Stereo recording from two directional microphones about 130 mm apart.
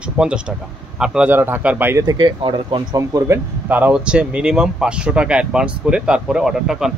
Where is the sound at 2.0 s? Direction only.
35° right (ahead or behind).